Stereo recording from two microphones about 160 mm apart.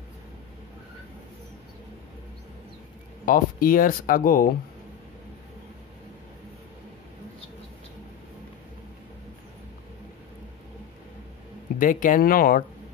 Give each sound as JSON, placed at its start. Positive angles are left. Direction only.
{"t": 3.3, "sound": "speech", "side_deg": 60}
{"t": 11.8, "sound": "speech", "side_deg": 55}